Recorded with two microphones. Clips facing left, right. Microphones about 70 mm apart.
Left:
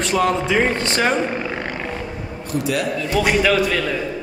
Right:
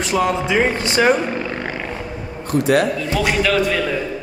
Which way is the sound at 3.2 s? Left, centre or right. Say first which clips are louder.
Even; centre.